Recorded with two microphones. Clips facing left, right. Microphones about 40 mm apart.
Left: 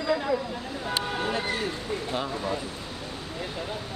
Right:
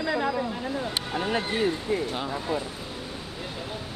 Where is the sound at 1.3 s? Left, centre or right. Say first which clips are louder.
Right 3 dB; right.